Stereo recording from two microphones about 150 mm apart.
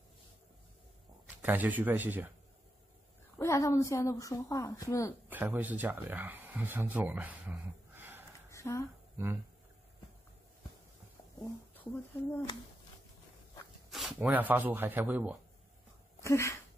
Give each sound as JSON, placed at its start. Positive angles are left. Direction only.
{"t": 1.4, "sound": "speech", "side_deg": -10}
{"t": 3.3, "sound": "a woman's voice", "side_deg": 20}
{"t": 5.3, "sound": "speech", "side_deg": -10}
{"t": 8.5, "sound": "a sound", "side_deg": 20}
{"t": 9.1, "sound": "speech", "side_deg": -15}
{"t": 13.8, "sound": "speech", "side_deg": 0}
{"t": 16.2, "sound": "a sound", "side_deg": 20}